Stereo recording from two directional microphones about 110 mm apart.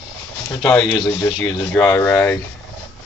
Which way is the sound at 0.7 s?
40° left (ahead or behind).